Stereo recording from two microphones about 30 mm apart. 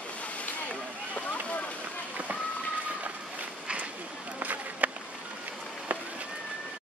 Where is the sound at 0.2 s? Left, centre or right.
Left.